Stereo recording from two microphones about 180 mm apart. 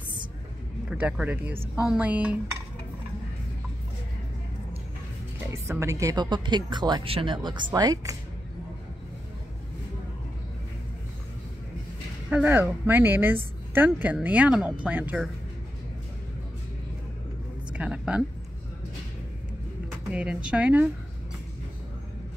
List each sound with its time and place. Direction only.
0.8 s speech: 5° right (ahead or behind)
5.5 s speech: 15° right (ahead or behind)
12.3 s speech: 10° right (ahead or behind)
17.7 s a sound: 5° right (ahead or behind)
20.1 s speech: 5° right (ahead or behind)